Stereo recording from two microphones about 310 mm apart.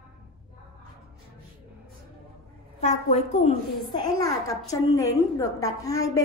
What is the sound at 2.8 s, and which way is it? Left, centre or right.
A woman's voice, left.